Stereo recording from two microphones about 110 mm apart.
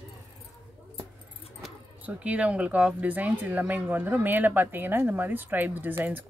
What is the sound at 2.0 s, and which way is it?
Speech, 10° right (ahead or behind).